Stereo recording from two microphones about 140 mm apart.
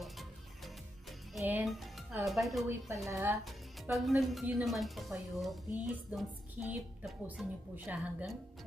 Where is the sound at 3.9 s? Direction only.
Centre (ahead or behind).